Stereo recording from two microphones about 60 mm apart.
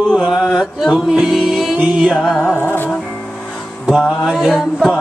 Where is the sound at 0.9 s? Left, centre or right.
Centre.